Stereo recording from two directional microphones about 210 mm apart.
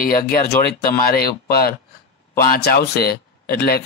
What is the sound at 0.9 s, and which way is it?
A man's voice, 45° left (ahead or behind).